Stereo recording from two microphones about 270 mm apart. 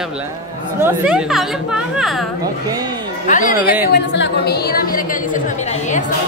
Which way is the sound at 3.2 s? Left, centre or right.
Left.